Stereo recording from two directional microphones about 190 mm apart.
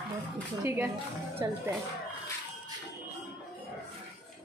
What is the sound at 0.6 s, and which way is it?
Speech, 10° right (ahead or behind).